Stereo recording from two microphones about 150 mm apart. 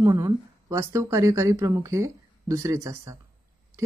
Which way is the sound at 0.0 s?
20° right (ahead or behind).